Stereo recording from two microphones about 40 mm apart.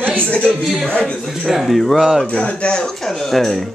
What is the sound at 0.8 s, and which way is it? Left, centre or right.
Speech, left.